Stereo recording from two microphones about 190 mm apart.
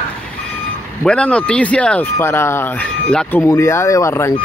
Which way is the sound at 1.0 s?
5° left (ahead or behind).